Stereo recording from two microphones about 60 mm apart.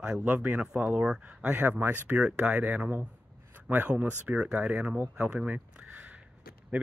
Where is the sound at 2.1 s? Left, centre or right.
Right.